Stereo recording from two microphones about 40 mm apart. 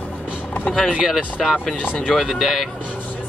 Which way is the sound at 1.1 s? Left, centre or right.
Centre.